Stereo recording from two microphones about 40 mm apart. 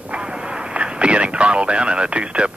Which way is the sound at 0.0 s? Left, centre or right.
Right.